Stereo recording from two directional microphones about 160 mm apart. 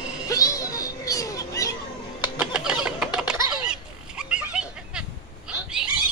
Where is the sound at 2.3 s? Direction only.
5° right (ahead or behind).